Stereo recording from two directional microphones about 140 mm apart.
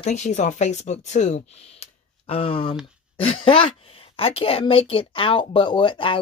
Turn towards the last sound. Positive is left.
turn(degrees=35)  # may be behind; listen again after turning